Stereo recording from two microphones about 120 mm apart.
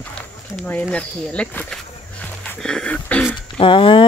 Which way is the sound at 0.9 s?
10° left (ahead or behind).